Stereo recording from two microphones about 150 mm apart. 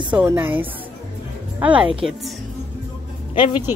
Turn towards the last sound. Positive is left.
turn(degrees=30)  # may be behind; listen again after turning